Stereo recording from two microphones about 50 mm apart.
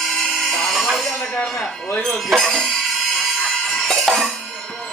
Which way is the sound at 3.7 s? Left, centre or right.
Centre.